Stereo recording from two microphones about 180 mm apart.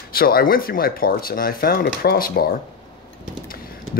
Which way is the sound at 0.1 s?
55° left (ahead or behind).